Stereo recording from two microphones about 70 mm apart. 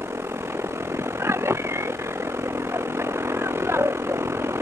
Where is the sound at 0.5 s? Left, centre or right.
Right.